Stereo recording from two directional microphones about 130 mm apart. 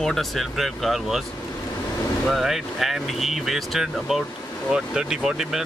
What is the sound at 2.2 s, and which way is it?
Speech, centre (ahead or behind).